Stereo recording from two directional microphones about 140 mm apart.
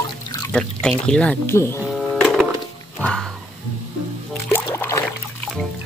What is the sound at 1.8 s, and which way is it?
Printer, centre (ahead or behind).